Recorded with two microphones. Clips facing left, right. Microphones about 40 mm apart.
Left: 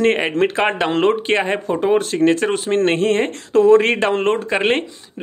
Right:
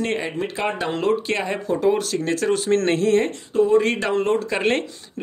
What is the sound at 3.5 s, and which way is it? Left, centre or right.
Speech, left.